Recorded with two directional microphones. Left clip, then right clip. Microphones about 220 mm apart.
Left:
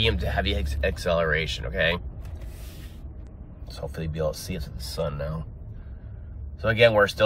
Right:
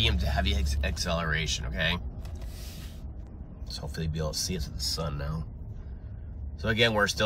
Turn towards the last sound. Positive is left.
turn(degrees=-5)  # may be behind; listen again after turning